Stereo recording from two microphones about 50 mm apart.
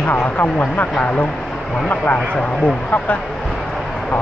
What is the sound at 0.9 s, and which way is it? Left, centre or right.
Speech, left.